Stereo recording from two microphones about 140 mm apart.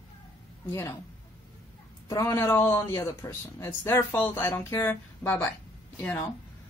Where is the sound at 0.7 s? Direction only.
20° left (ahead or behind).